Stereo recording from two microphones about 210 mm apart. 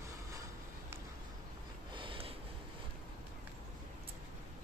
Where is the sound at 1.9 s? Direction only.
25° right (ahead or behind).